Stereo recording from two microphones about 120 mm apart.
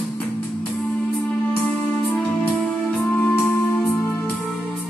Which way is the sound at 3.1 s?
15° left (ahead or behind).